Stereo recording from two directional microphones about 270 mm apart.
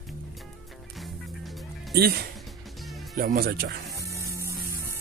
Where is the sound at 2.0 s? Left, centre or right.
Right.